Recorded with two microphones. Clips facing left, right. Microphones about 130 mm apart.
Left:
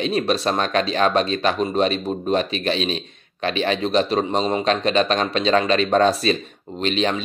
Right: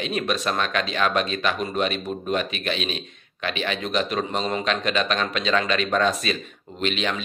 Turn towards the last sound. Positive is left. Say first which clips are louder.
# left 4 dB
turn(degrees=35)  # may be behind; listen again after turning